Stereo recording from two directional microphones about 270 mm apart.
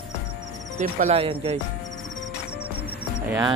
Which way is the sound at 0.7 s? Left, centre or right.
Right.